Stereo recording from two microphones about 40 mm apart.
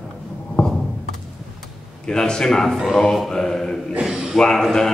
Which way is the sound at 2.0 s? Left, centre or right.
Centre.